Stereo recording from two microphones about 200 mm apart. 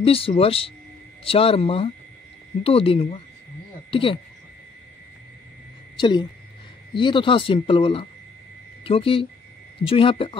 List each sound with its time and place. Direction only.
0.0 s speech: 30° left (ahead or behind)
5.9 s a woman's voice: 25° left (ahead or behind)